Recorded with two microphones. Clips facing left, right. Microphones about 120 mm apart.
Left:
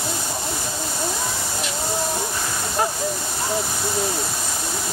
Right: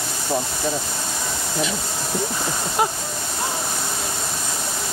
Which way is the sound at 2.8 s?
15° right (ahead or behind).